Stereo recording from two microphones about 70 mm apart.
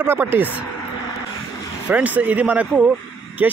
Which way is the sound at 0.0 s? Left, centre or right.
Right.